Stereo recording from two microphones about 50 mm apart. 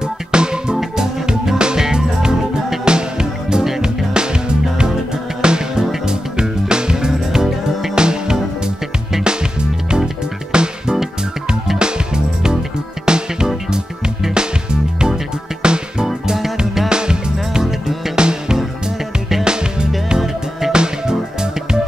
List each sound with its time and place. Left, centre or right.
0.0 s music: centre
16.1 s music: centre
16.9 s music: centre